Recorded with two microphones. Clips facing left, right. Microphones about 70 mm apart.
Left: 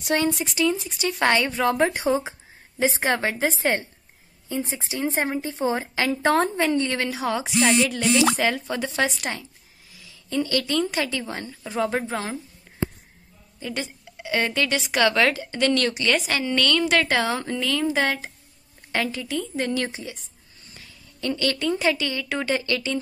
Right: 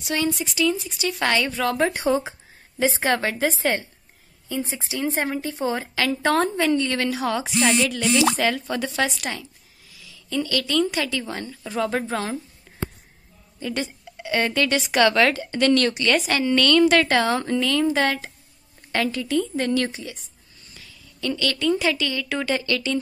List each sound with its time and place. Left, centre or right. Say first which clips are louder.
0.1 s speech: left 2 dB; left
1.0 s a woman's voice: left 1 dB; left
13.6 s a woman's voice: right 3 dB; centre; by 22.9 s left